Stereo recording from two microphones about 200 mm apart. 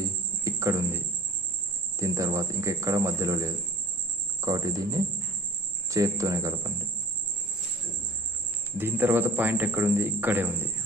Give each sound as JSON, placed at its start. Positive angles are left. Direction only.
{"t": 0.0, "sound": "cricket", "side_deg": -15}
{"t": 2.0, "sound": "a man's voice", "side_deg": -15}
{"t": 8.7, "sound": "a man's voice", "side_deg": -10}